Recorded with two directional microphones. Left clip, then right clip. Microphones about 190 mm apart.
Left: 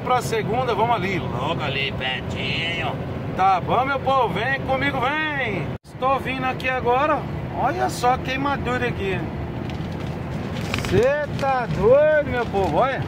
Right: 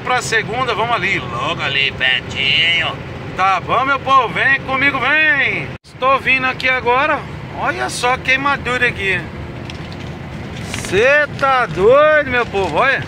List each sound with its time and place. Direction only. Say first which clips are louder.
0.1 s speech: right 5 dB; 10° left (ahead or behind)
11.0 s speech: right 8 dB; centre (ahead or behind)